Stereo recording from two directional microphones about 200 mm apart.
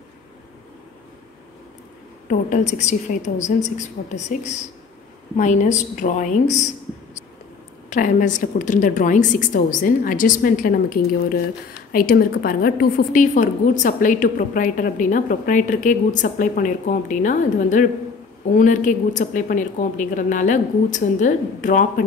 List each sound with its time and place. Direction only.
2.2 s a woman's voice: 35° left (ahead or behind)
7.9 s a woman's voice: 40° left (ahead or behind)